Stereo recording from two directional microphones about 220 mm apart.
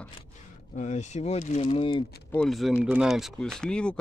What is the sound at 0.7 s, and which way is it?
Speech, 35° left (ahead or behind).